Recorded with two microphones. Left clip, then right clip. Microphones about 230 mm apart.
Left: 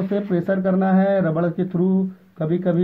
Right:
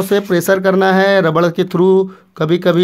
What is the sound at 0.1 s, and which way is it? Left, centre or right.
Speech, right.